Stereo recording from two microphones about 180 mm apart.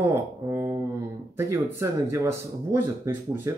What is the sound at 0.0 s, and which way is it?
Speech, 15° right (ahead or behind).